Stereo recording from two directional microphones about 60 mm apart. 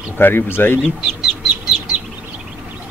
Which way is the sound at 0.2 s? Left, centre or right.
Left.